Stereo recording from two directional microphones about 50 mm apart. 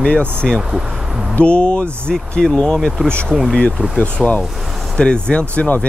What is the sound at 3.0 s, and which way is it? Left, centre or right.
Speech, left.